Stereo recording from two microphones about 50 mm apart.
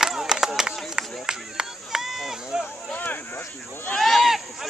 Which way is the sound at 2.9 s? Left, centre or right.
Left.